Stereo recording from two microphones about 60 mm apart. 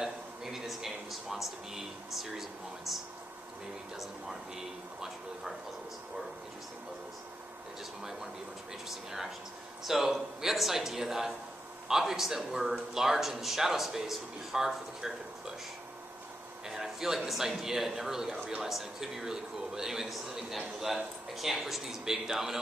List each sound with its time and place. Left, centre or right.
0.0 s music: centre
3.9 s speech: centre
8.0 s a man's voice: centre
16.6 s a man's voice: centre